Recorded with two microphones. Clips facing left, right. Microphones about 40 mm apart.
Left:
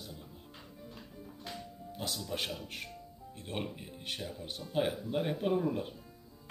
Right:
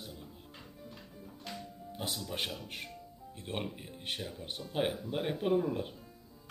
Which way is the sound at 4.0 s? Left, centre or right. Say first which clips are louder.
Right 1 dB; right.